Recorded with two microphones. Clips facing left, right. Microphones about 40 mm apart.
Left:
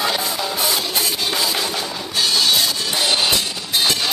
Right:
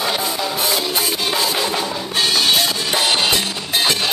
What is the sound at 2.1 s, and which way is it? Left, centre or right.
Music, right.